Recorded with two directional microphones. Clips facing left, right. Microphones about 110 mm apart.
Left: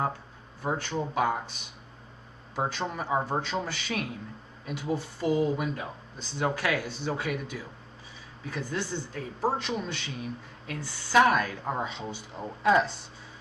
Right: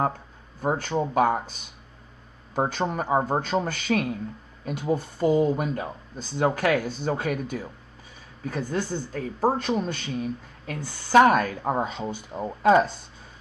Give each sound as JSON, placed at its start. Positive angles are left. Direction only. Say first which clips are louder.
{"t": 0.6, "sound": "speech", "louder": "right 5 dB", "side_deg": -45}
{"t": 2.5, "sound": "speech", "louder": "right 6 dB", "side_deg": -45}